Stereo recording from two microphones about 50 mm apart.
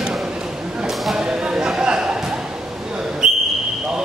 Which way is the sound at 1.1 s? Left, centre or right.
Centre.